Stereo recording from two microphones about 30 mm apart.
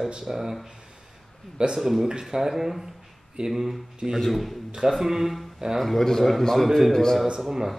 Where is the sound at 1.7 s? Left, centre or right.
Centre.